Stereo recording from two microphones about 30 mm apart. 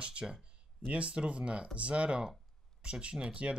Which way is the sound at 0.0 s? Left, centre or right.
Right.